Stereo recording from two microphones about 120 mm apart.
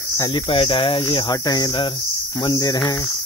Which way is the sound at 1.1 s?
35° left (ahead or behind).